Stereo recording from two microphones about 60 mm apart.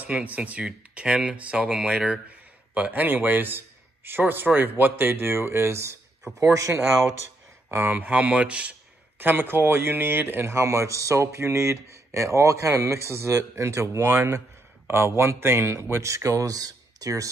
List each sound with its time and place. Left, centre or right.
0.0 s speech: right
2.7 s a man's voice: right
6.4 s speech: right
7.7 s speech: right
9.2 s speech: right